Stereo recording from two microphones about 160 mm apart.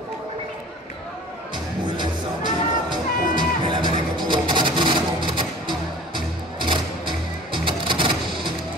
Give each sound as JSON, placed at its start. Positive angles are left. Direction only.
{"t": 2.0, "sound": "music", "side_deg": -30}